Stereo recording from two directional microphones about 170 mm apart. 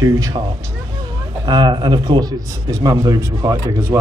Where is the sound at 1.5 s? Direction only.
25° right (ahead or behind).